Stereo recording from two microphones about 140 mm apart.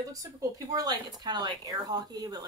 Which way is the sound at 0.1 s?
25° right (ahead or behind).